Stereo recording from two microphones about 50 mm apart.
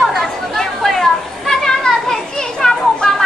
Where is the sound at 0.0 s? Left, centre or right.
Centre.